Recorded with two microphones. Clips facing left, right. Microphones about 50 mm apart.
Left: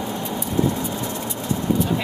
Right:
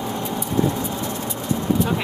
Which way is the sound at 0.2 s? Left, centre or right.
Centre.